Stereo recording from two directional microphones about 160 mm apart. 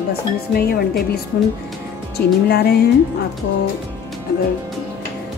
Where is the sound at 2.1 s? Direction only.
80° left.